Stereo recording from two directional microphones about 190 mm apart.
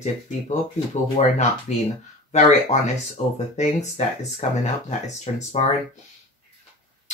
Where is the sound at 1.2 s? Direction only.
35° left (ahead or behind).